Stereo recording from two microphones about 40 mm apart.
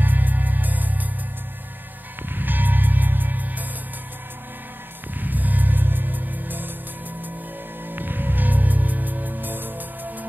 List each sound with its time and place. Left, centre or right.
0.0 s music: right
2.2 s music: right
5.2 s music: right
7.9 s music: right